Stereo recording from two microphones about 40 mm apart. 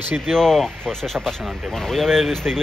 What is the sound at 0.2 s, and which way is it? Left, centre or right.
Speech, centre.